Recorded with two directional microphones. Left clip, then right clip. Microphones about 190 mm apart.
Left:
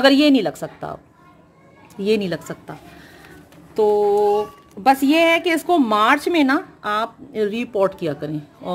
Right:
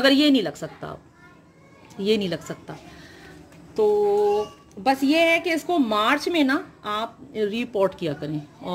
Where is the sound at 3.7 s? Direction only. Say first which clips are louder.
Left 3 dB; 25° left (ahead or behind).